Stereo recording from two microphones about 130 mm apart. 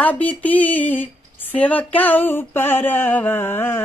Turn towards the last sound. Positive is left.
turn(degrees=15)  # may be behind; listen again after turning